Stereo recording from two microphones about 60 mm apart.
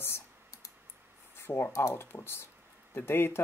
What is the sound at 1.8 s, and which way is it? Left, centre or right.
Speech, left.